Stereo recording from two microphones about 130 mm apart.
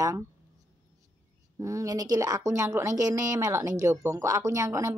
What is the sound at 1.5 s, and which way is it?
Speech, 25° right (ahead or behind).